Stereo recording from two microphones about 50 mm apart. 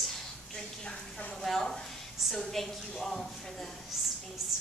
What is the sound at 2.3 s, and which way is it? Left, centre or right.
Speech, centre.